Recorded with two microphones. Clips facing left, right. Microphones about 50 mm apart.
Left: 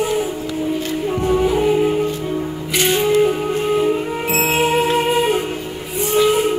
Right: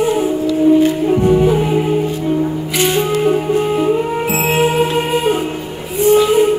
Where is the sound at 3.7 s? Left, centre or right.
Centre.